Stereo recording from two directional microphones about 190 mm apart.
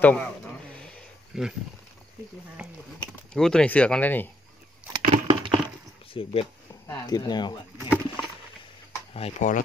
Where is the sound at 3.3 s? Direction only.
5° left (ahead or behind).